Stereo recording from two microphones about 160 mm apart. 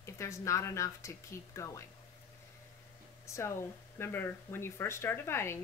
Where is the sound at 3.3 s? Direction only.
15° left (ahead or behind).